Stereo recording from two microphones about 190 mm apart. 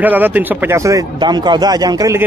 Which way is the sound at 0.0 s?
10° right (ahead or behind).